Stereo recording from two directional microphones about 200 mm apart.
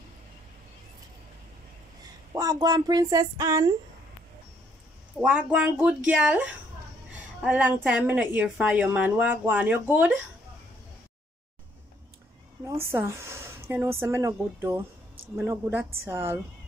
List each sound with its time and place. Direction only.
2.3 s a woman's voice: 20° right (ahead or behind)
5.2 s a woman's voice: 5° right (ahead or behind)
12.8 s a woman's voice: 15° right (ahead or behind)